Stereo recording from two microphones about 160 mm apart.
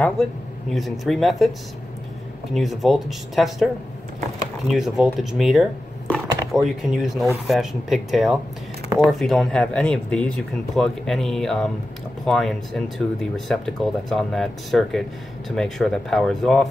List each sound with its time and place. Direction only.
0.0 s speech: centre (ahead or behind)
2.5 s speech: centre (ahead or behind)
4.6 s speech: centre (ahead or behind)